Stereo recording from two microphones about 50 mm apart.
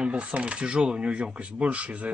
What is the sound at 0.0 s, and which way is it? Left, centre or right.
Speech, right.